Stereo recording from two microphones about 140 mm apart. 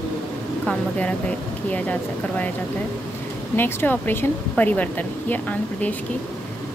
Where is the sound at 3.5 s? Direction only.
15° left (ahead or behind).